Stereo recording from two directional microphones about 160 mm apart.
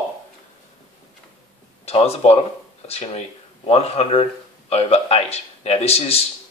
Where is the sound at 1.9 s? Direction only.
40° left (ahead or behind).